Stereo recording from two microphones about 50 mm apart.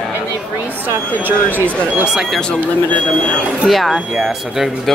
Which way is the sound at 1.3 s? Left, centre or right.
Right.